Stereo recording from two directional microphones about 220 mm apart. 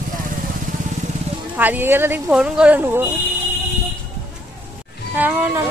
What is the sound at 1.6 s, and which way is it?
Speech, 10° right (ahead or behind).